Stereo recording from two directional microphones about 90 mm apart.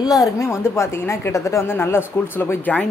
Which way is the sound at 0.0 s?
40° left (ahead or behind).